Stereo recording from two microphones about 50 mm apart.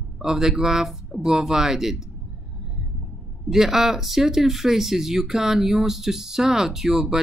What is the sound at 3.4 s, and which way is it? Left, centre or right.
A woman's voice, centre.